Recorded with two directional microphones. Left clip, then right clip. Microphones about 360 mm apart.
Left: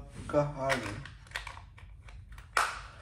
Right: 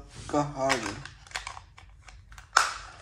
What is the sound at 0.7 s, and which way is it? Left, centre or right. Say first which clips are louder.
Speech: right 4 dB; right.